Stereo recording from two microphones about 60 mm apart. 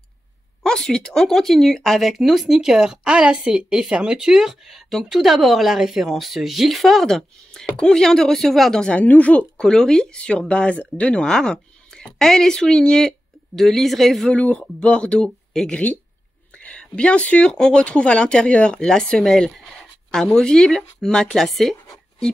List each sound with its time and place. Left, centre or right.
0.7 s speech: centre
7.6 s speech: centre
8.8 s speech: left
9.6 s speech: centre
14.3 s speech: centre
16.5 s a sound: centre
17.5 s speech: centre